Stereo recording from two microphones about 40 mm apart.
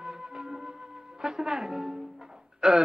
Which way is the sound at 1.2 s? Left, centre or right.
Centre.